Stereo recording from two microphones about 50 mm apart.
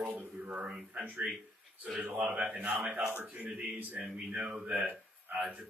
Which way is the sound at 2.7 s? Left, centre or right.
Centre.